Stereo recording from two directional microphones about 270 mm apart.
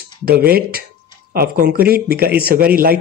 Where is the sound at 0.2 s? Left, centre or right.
Right.